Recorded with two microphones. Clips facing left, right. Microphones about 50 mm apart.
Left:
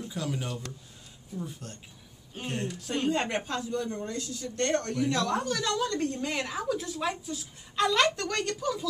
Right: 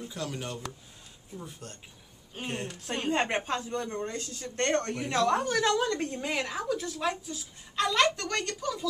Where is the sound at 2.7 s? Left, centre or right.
Right.